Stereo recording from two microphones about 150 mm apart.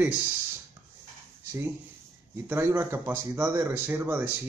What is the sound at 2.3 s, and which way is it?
Speech, 15° right (ahead or behind).